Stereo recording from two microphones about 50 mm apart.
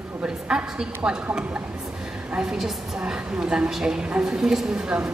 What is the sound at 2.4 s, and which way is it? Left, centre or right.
A woman's voice, centre.